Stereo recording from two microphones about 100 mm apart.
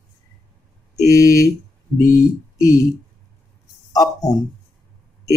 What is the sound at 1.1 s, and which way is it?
Speech, 35° left (ahead or behind).